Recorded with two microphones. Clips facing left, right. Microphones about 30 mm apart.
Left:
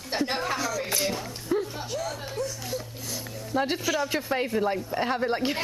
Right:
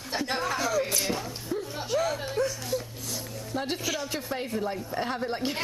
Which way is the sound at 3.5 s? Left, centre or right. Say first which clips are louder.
Left 5 dB; centre.